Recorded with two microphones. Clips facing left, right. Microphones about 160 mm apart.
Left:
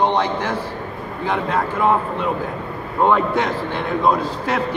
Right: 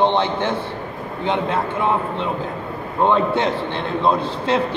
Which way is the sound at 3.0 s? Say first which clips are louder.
Even; 25° right (ahead or behind).